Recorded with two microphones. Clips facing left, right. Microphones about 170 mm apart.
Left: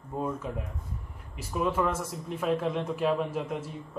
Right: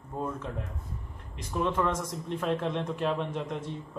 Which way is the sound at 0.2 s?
10° left (ahead or behind).